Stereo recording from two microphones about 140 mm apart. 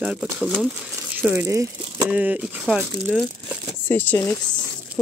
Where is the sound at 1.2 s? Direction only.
15° right (ahead or behind).